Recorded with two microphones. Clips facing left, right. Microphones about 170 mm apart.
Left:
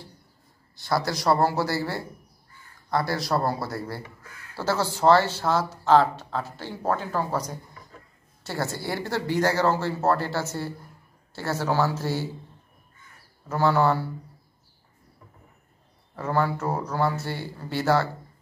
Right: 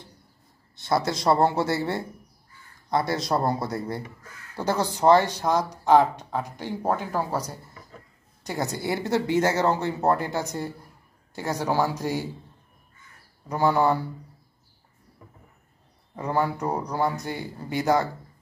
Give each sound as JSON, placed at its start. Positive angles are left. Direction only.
{"t": 0.7, "sound": "speech", "side_deg": -20}
{"t": 13.5, "sound": "speech", "side_deg": -15}
{"t": 16.2, "sound": "speech", "side_deg": -15}